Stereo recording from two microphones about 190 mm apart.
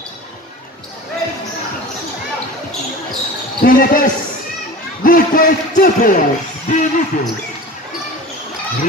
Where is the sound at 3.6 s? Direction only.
50° left (ahead or behind).